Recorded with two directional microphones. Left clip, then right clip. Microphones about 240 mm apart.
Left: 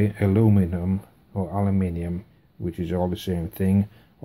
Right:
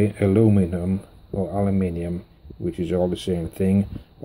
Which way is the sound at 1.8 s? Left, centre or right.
Centre.